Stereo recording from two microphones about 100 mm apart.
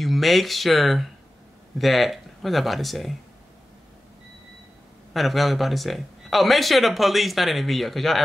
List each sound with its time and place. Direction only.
0.0 s speech: centre (ahead or behind)
5.1 s speech: centre (ahead or behind)